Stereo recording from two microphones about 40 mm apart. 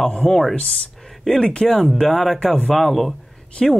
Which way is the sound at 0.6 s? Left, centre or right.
Left.